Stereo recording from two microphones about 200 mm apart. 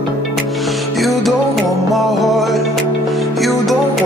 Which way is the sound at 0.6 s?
Centre (ahead or behind).